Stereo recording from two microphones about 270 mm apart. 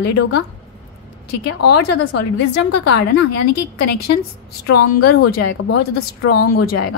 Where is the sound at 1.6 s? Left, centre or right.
Left.